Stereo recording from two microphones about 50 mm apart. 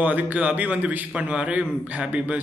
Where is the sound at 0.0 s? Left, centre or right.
Right.